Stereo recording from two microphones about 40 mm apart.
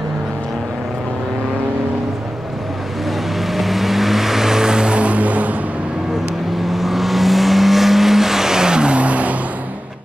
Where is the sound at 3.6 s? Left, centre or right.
Centre; by 5.4 s right.